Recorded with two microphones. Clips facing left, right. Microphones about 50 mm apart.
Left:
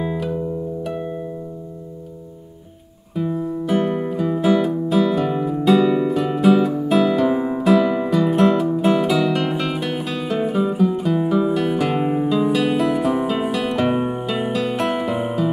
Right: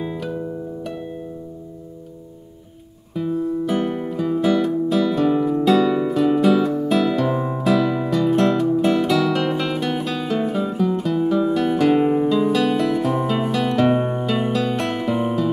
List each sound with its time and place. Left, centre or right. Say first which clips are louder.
0.0 s music: left 3 dB; centre
3.2 s music: right 1 dB; centre